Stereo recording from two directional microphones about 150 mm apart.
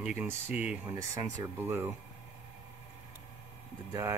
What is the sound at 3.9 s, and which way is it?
Speech, 15° right (ahead or behind).